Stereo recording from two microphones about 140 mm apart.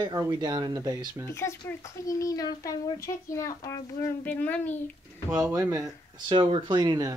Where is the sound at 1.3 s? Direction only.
20° left (ahead or behind).